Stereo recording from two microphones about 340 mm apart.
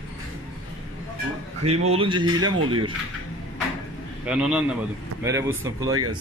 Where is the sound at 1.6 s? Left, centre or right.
Centre.